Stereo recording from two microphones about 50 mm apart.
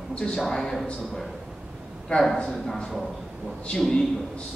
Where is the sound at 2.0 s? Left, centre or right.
Centre.